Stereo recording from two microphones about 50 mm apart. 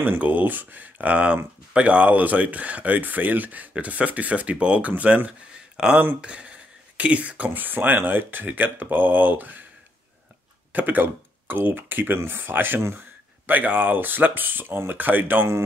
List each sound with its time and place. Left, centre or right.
0.2 s speech: right
5.8 s speech: centre; by 9.6 s right
10.7 s speech: right